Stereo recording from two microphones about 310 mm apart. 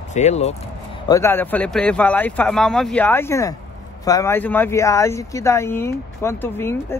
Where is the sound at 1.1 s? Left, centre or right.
Centre.